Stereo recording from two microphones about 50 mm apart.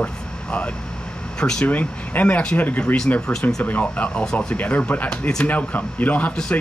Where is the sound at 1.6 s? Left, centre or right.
Left.